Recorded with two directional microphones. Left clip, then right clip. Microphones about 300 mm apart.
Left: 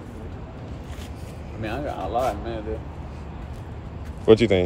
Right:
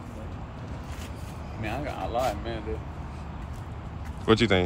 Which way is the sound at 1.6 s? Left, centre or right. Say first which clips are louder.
Left 4 dB; right.